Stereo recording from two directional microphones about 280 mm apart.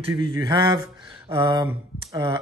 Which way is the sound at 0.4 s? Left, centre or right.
Centre.